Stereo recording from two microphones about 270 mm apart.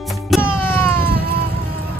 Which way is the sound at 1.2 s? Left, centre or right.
Left.